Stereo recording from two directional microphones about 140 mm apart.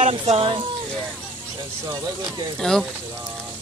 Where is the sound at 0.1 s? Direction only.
40° right (ahead or behind).